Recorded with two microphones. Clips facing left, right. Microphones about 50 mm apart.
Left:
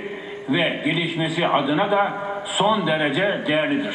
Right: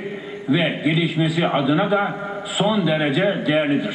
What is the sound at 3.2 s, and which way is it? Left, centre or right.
Speech, centre.